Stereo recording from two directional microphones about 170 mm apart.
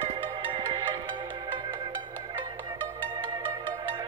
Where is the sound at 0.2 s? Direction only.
30° right (ahead or behind).